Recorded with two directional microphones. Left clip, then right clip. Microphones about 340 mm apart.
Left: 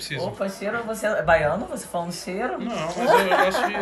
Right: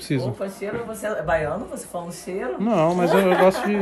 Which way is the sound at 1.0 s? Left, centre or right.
Centre.